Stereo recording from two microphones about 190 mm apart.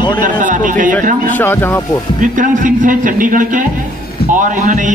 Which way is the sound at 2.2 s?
45° right (ahead or behind).